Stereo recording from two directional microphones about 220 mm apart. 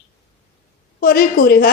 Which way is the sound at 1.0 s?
45° left (ahead or behind).